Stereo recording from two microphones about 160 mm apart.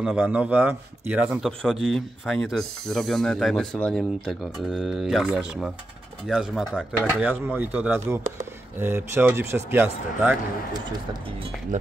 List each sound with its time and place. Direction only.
0.0 s speech: 10° right (ahead or behind)
1.6 s speech: centre (ahead or behind); by 10.3 s 15° right (ahead or behind)
11.7 s speech: 50° right (ahead or behind)